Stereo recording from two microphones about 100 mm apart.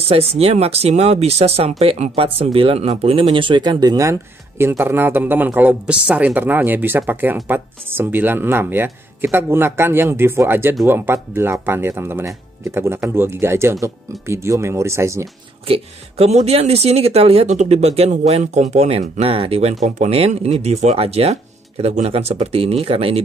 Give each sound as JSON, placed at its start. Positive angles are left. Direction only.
{"t": 0.0, "sound": "speech", "side_deg": -85}
{"t": 15.7, "sound": "speech", "side_deg": -85}
{"t": 20.1, "sound": "speech", "side_deg": -90}